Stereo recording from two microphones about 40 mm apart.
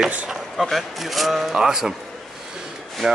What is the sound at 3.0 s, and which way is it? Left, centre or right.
Speech, centre.